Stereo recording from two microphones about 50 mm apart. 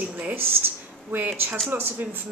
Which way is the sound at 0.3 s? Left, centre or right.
Right.